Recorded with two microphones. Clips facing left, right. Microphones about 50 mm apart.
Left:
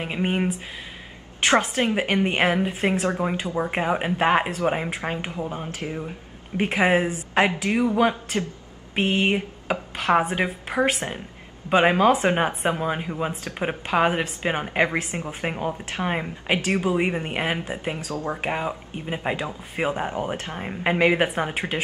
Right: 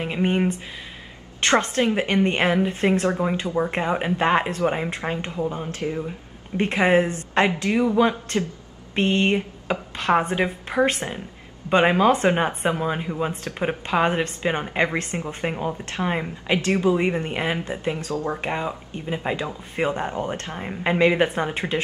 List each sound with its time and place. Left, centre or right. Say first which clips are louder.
0.0 s a woman's voice: right 2 dB; centre